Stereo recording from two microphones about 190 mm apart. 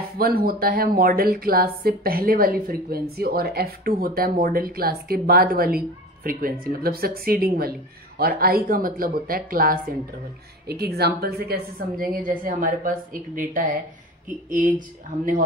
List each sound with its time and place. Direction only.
0.2 s speech: 50° right (ahead or behind)